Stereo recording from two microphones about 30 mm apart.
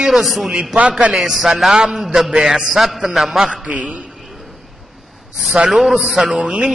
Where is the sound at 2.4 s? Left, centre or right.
Centre.